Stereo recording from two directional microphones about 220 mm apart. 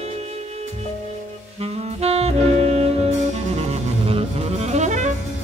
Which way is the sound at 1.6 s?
25° right (ahead or behind).